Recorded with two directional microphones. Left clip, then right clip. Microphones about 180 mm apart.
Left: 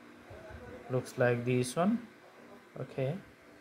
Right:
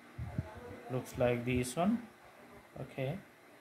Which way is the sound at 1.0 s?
25° left (ahead or behind).